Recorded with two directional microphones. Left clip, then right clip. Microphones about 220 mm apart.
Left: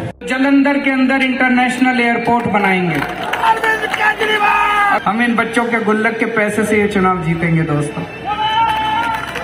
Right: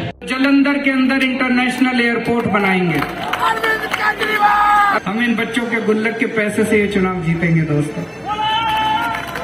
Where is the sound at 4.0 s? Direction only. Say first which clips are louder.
Left 1 dB; 35° left (ahead or behind).